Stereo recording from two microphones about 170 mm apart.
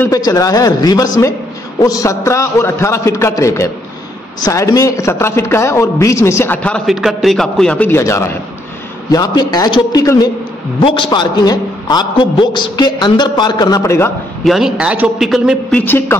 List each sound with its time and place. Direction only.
0.0 s a man's voice: 20° left (ahead or behind)
14.4 s a man's voice: centre (ahead or behind)
15.8 s a man's voice: 15° left (ahead or behind)